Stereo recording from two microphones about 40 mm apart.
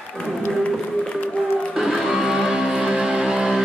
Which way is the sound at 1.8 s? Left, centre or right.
Centre.